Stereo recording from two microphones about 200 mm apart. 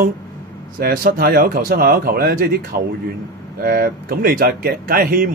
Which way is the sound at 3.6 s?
50° right (ahead or behind).